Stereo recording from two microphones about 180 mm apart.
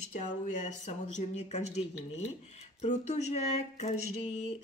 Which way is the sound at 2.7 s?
40° left (ahead or behind).